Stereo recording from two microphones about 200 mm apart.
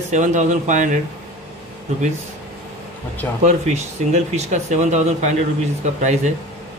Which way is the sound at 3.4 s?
35° right (ahead or behind).